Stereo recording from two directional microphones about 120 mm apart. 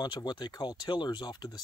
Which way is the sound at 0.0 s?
40° left (ahead or behind).